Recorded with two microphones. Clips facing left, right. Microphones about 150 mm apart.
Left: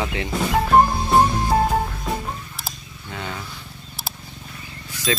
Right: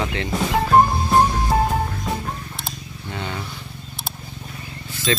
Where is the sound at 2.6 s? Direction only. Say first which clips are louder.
Right 3 dB; centre (ahead or behind).